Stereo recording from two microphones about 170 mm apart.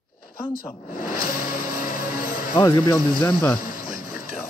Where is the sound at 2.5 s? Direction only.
25° left (ahead or behind).